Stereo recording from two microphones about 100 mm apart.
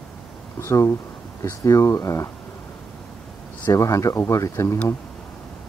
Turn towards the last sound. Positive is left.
turn(degrees=30)  # may be behind; listen again after turning